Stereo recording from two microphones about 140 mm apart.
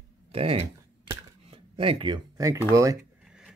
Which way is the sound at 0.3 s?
45° right (ahead or behind).